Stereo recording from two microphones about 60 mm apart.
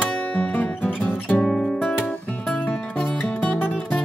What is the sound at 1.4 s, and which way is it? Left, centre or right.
Music, centre.